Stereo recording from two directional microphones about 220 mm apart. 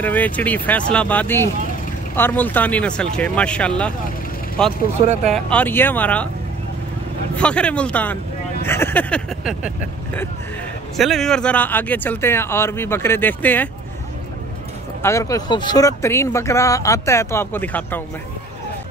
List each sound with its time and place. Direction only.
0.0 s speech: 10° left (ahead or behind)
5.0 s speech: 25° right (ahead or behind)
5.3 s speech: 5° left (ahead or behind)
7.3 s speech: 5° left (ahead or behind)
11.0 s speech: centre (ahead or behind)
15.0 s speech: 10° left (ahead or behind)